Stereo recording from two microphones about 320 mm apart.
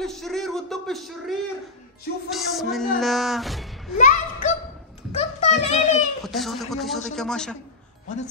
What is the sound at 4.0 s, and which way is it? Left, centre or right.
Speech, left.